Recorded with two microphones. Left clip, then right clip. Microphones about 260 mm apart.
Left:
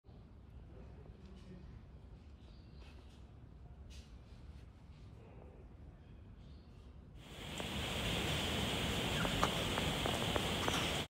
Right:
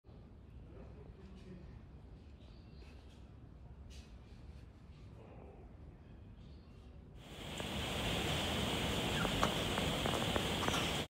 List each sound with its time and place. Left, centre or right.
7.2 s waves: centre